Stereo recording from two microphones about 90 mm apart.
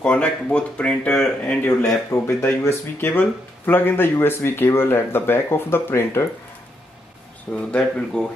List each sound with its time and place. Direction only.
0.0 s speech: 10° left (ahead or behind)
1.6 s speech: 25° left (ahead or behind)
7.5 s speech: 10° left (ahead or behind)